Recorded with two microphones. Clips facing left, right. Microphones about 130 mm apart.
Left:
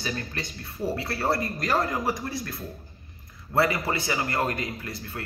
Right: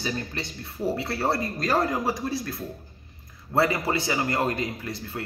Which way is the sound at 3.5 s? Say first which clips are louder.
Right 1 dB; 20° right (ahead or behind).